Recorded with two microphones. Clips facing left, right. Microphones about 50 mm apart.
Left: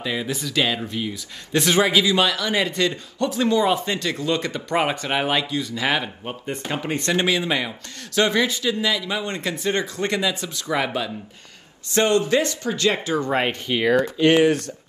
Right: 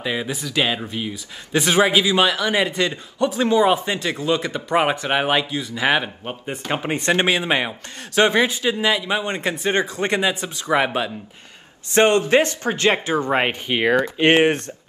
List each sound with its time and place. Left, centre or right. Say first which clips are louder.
0.0 s speech: right 1 dB; centre
7.2 s a man's voice: right 2 dB; right